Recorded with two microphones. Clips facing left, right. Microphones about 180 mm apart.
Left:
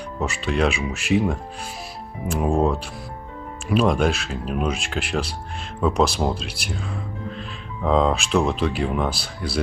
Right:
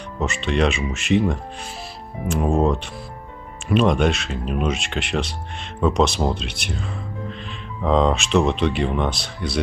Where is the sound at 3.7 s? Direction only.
5° left (ahead or behind).